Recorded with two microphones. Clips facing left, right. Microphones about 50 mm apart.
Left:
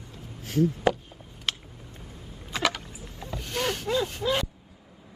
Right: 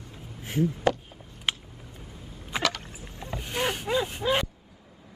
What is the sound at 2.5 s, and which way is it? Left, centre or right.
Rowboat, centre.